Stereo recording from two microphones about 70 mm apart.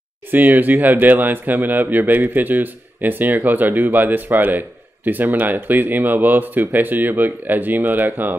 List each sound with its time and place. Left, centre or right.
0.3 s speech: right